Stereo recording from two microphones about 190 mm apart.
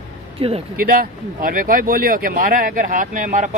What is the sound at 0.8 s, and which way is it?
A man's voice, 50° right (ahead or behind).